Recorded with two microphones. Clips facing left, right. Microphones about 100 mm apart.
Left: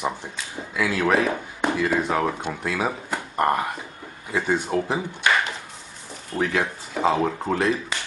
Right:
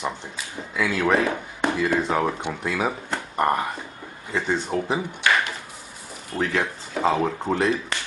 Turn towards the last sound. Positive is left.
turn(degrees=0)  # may be behind; listen again after turning